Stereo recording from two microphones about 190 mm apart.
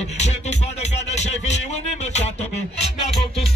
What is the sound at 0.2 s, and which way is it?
Music, 35° left (ahead or behind).